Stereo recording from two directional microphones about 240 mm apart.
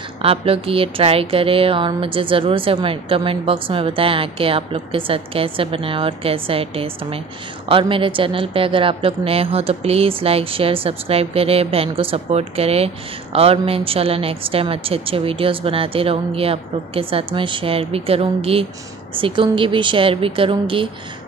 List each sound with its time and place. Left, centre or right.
0.2 s a woman's voice: right